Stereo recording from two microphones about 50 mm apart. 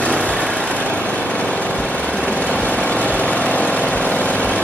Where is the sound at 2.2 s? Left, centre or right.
Left.